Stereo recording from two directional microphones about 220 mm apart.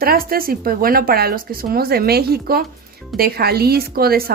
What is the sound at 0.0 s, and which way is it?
Speech, 40° right (ahead or behind).